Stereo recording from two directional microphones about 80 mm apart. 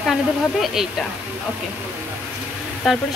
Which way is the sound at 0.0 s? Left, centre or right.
Centre.